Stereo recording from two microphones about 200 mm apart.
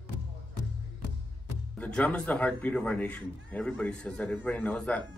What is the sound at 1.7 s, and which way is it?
Speech, 5° left (ahead or behind).